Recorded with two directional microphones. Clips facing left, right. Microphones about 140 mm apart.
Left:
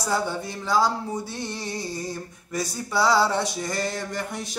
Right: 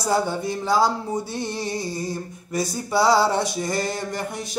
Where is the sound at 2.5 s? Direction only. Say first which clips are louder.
Right 4 dB; 30° right (ahead or behind).